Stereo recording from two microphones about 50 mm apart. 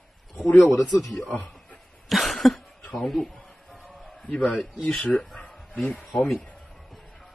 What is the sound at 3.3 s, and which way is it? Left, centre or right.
Music, left.